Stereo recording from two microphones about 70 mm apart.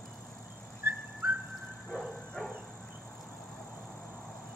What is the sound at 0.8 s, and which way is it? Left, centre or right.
Whistling, right.